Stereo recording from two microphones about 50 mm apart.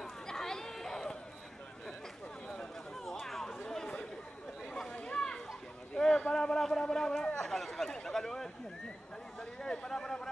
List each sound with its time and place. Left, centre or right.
0.3 s chatter: centre
3.1 s chatter: centre
4.9 s children playing: left
5.9 s a sound: centre